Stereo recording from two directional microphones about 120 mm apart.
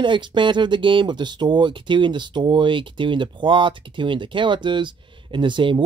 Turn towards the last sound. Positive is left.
turn(degrees=-40)  # may be behind; listen again after turning